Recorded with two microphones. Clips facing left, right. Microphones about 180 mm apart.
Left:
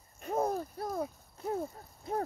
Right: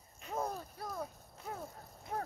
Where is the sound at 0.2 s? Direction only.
45° left (ahead or behind).